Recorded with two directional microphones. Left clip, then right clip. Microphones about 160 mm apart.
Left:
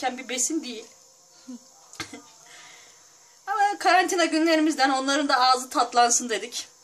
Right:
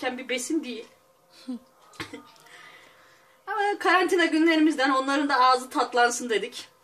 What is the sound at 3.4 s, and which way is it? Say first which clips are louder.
A woman's voice: left 3 dB; 45° left (ahead or behind).